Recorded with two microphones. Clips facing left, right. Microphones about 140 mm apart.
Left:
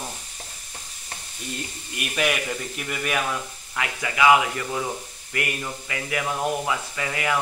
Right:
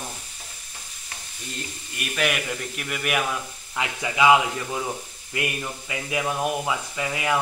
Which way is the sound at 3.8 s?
20° right (ahead or behind).